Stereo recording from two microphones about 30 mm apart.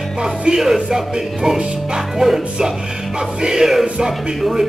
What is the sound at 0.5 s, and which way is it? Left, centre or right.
Speech, centre.